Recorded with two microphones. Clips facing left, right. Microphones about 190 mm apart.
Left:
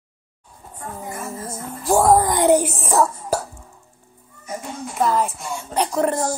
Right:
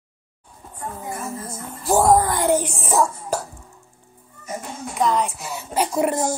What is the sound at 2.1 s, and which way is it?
Speech, 20° left (ahead or behind).